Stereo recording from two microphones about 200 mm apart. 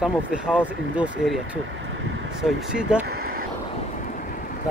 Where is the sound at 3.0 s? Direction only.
50° right (ahead or behind).